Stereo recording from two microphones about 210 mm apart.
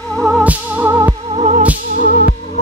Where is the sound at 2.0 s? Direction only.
40° left (ahead or behind).